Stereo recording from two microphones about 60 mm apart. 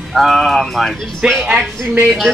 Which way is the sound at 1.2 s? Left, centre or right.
Centre.